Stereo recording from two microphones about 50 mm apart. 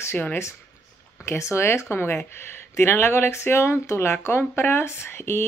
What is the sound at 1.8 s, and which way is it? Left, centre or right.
A woman's voice, left.